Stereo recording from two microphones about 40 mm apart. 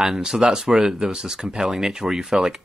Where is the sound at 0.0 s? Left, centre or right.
Centre.